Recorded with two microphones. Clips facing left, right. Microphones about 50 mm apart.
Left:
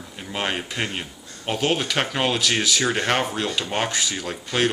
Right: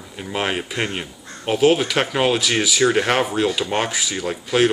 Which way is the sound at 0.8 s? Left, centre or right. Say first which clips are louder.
Right 3 dB; centre.